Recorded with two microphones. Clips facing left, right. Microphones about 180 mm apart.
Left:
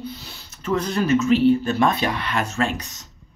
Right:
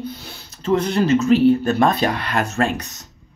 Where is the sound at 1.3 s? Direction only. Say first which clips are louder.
Right 3 dB; 45° right (ahead or behind).